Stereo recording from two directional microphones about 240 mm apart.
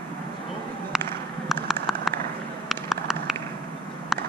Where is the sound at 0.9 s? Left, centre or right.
Centre.